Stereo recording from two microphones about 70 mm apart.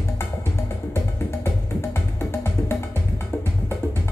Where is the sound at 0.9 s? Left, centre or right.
Left.